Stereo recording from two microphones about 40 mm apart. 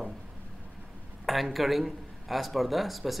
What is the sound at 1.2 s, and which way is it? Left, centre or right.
Speech, centre.